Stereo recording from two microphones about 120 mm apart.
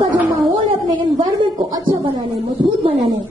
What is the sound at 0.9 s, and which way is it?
A man's voice, 45° right (ahead or behind).